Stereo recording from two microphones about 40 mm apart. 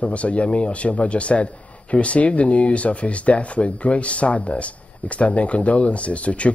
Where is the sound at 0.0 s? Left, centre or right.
Left.